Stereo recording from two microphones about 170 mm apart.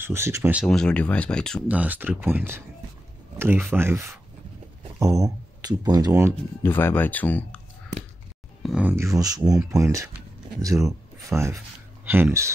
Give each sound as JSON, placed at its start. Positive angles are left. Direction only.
{"t": 0.0, "sound": "speech", "side_deg": -15}
{"t": 0.7, "sound": "speech", "side_deg": 5}
{"t": 1.7, "sound": "speech", "side_deg": -10}
{"t": 6.6, "sound": "speech", "side_deg": 10}
{"t": 8.6, "sound": "speech", "side_deg": -10}